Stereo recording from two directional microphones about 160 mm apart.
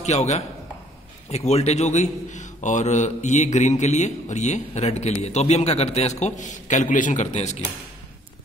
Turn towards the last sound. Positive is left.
turn(degrees=45)  # may be behind; listen again after turning